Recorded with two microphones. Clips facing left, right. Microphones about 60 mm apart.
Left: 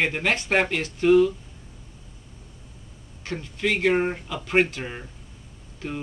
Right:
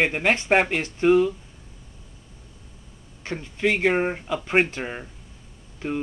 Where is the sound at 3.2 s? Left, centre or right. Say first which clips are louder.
Right 2 dB; right.